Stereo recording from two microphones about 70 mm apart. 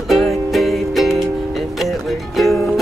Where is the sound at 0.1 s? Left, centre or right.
Centre.